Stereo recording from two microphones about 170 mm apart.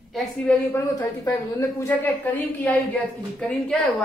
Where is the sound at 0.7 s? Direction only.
15° left (ahead or behind).